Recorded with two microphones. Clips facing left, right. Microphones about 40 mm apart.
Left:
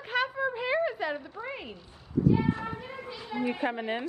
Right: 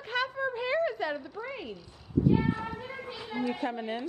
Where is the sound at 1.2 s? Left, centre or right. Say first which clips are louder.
Even; left.